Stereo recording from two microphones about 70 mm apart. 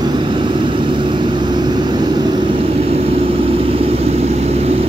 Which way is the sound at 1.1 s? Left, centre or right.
Right.